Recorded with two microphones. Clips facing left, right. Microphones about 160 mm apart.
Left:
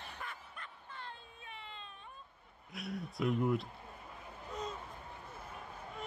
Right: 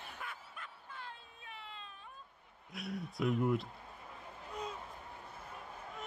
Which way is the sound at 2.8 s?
Centre (ahead or behind).